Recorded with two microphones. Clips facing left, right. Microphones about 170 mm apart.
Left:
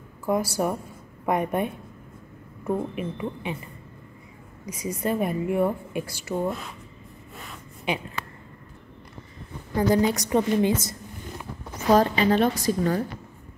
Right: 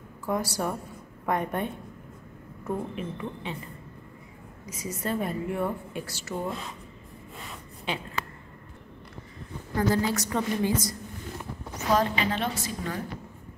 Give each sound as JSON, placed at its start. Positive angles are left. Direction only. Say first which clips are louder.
{"t": 0.2, "sound": "a woman's voice", "louder": "left 5 dB", "side_deg": 10}
{"t": 4.6, "sound": "a woman's voice", "louder": "left 5 dB", "side_deg": 10}
{"t": 7.9, "sound": "a woman's voice", "louder": "left 5 dB", "side_deg": 15}
{"t": 9.8, "sound": "a woman's voice", "louder": "left 4 dB", "side_deg": 15}
{"t": 11.9, "sound": "a woman's voice", "louder": "left 6 dB", "side_deg": 35}